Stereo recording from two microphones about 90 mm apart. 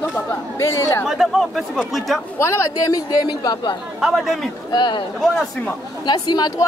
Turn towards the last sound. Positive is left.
turn(degrees=50)  # may be behind; listen again after turning